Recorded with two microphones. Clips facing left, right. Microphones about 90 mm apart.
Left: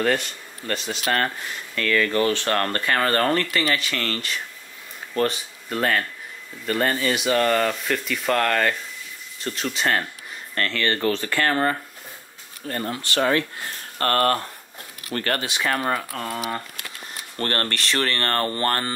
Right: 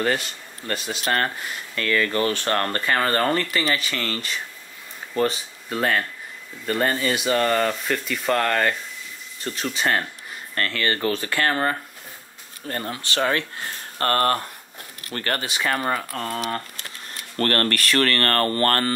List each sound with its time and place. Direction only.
0.0 s speech: 5° right (ahead or behind)
10.5 s speech: 15° right (ahead or behind)
11.2 s speech: 20° right (ahead or behind)
12.6 s speech: 35° right (ahead or behind)
13.9 s speech: 25° right (ahead or behind)
15.1 s speech: 35° left (ahead or behind)
15.4 s speech: centre (ahead or behind)
17.4 s speech: 20° left (ahead or behind)